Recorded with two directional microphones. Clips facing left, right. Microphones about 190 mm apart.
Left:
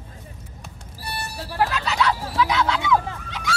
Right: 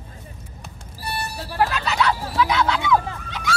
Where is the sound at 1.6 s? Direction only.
55° right (ahead or behind).